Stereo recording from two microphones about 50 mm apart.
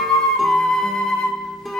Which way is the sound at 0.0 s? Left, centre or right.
Centre.